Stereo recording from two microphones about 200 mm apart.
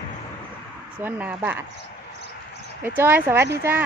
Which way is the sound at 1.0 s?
10° right (ahead or behind).